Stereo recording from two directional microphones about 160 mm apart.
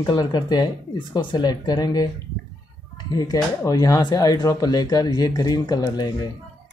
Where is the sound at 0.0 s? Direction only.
25° left (ahead or behind).